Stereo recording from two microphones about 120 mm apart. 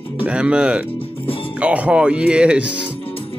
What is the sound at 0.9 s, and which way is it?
Music, 50° left (ahead or behind).